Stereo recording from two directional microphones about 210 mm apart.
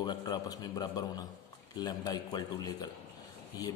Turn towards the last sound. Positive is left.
turn(degrees=15)  # may be behind; listen again after turning